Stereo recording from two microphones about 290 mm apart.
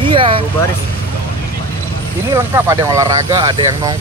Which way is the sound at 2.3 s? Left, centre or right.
Centre.